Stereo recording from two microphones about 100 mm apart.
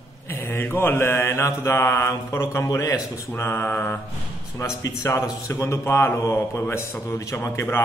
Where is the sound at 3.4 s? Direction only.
20° left (ahead or behind).